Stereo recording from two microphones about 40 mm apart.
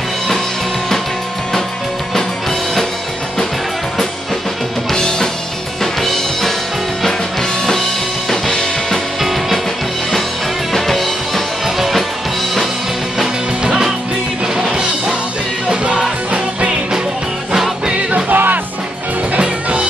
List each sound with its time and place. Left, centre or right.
4.9 s music: centre
8.3 s music: centre
9.2 s music: centre
10.7 s music: centre
11.6 s music: centre
13.2 s music: centre
18.3 s music: right
19.3 s music: right